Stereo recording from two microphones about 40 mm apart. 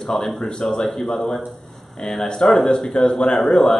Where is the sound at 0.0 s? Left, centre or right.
Centre.